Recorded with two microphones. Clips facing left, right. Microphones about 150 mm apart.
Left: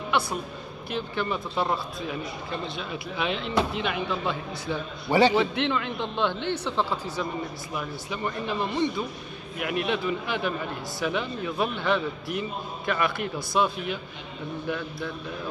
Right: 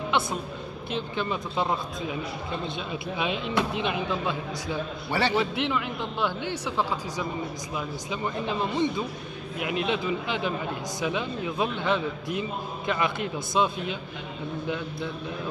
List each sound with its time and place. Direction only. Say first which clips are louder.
0.8 s a man's voice: left 1 dB; 20° right (ahead or behind)
5.1 s a man's voice: left 5 dB; 15° left (ahead or behind)
5.4 s a man's voice: left 1 dB; 10° right (ahead or behind)